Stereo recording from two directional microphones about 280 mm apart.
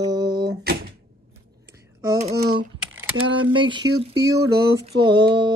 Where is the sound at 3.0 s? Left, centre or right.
Centre.